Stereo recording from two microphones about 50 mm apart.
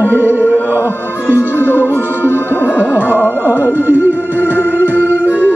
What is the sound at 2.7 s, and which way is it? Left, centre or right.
Music, right.